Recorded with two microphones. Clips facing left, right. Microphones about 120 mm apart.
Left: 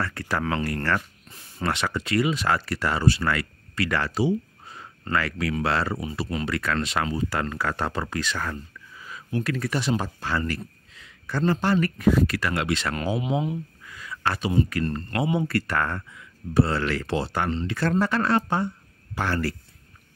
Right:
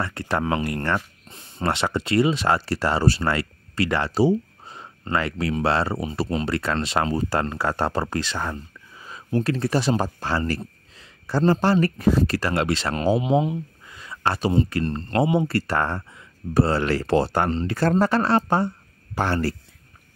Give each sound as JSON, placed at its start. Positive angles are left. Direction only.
{"t": 0.0, "sound": "speech", "side_deg": -25}